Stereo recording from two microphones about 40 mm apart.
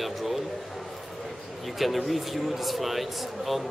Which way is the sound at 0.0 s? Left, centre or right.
Centre.